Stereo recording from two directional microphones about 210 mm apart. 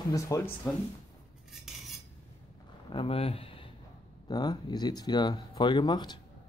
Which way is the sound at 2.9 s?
25° left (ahead or behind).